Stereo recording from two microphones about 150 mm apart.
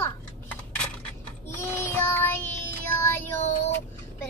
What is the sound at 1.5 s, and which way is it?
Child singing, 15° left (ahead or behind).